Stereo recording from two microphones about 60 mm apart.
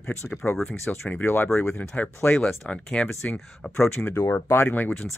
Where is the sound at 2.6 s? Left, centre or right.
Centre.